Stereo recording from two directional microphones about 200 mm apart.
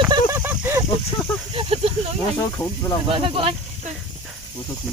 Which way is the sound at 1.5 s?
30° right (ahead or behind).